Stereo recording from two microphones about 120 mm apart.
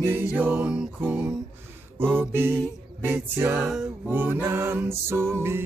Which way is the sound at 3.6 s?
5° right (ahead or behind).